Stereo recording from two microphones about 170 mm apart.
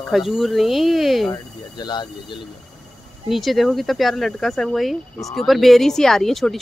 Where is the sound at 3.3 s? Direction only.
Centre (ahead or behind).